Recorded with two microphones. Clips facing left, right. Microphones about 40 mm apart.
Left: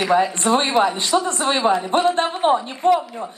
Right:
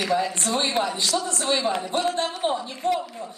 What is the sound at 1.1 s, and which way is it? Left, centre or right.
Speech, left.